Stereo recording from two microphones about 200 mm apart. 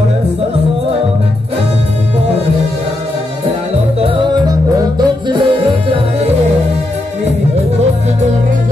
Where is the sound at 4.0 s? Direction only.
25° right (ahead or behind).